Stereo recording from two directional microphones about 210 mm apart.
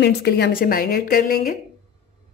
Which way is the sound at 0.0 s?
50° left (ahead or behind).